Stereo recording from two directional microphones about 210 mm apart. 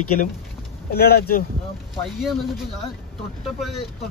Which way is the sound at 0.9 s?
50° left (ahead or behind).